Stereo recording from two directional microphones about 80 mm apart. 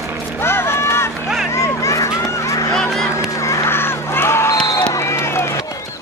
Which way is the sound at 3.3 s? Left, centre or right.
Left.